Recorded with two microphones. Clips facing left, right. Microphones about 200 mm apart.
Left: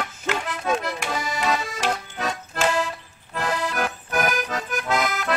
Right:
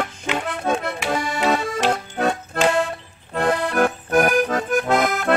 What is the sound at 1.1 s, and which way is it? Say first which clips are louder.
Accordion: right 5 dB; 60° right (ahead or behind).